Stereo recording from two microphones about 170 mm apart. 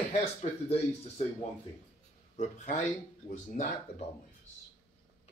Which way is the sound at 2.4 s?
45° left (ahead or behind).